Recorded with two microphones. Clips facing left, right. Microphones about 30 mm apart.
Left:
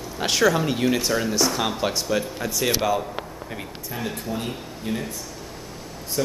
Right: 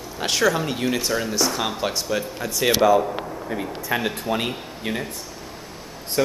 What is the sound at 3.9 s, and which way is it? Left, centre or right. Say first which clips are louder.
Speech: right 8 dB; right.